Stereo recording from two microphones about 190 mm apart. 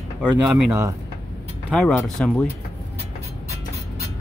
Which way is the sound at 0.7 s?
15° right (ahead or behind).